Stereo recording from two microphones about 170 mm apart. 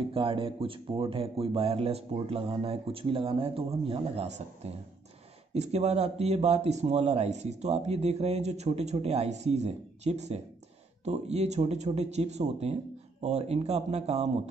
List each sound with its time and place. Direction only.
0.0 s speech: 30° right (ahead or behind)
5.5 s speech: 40° right (ahead or behind)